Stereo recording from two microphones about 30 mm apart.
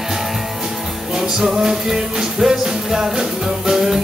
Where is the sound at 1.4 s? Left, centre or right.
Right.